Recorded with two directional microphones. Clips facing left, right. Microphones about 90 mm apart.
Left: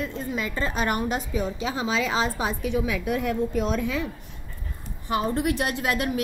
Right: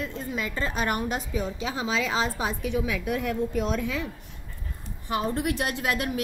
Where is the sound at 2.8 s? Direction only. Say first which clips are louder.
Left 2 dB; 15° left (ahead or behind).